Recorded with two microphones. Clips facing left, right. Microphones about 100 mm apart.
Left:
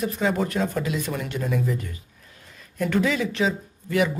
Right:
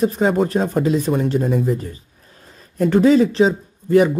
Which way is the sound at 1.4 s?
45° right (ahead or behind).